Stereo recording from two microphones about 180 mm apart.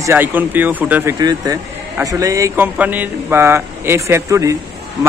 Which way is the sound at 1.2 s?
20° right (ahead or behind).